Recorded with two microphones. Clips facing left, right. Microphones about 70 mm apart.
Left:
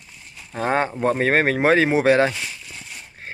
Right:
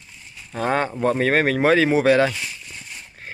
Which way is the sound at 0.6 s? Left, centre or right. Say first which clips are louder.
Even; left.